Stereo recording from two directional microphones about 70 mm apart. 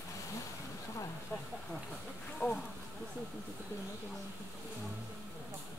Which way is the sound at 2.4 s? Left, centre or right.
Left.